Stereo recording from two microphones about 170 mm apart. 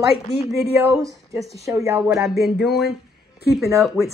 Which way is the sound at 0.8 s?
20° right (ahead or behind).